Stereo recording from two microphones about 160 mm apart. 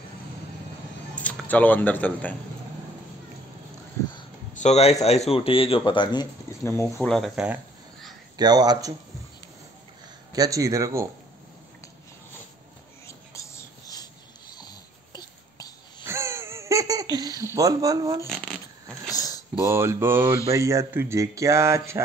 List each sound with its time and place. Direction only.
1.1 s speech: 10° left (ahead or behind)
4.6 s speech: 45° left (ahead or behind)
6.6 s speech: 15° left (ahead or behind)
7.1 s speech: centre (ahead or behind)
8.4 s speech: 25° right (ahead or behind)
10.3 s speech: 20° right (ahead or behind)
13.0 s whispering: 20° left (ahead or behind)
14.6 s a sound: 25° left (ahead or behind)
16.0 s laughter: 15° right (ahead or behind)
17.6 s speech: 20° right (ahead or behind)
18.2 s a sound: centre (ahead or behind)
19.0 s a sound: 20° left (ahead or behind)
19.6 s speech: 15° right (ahead or behind)